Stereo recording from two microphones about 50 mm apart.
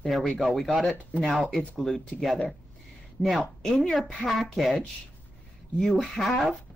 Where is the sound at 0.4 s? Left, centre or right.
Centre.